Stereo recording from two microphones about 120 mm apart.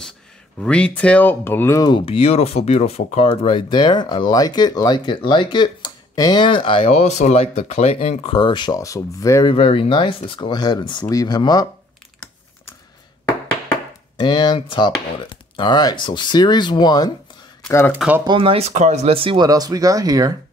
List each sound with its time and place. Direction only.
0.6 s speech: 10° left (ahead or behind)
1.8 s speech: 35° left (ahead or behind)
2.0 s speech: 55° left (ahead or behind)
7.0 s speech: 70° left (ahead or behind)
8.2 s speech: 45° left (ahead or behind); by 9.5 s 25° left (ahead or behind)
9.5 s speech: 45° left (ahead or behind)
11.1 s speech: 30° left (ahead or behind)
14.1 s speech: 40° left (ahead or behind)
17.6 s speech: 20° left (ahead or behind)
17.9 s speech: 10° right (ahead or behind)
18.2 s speech: 45° right (ahead or behind)
19.4 s speech: 30° right (ahead or behind)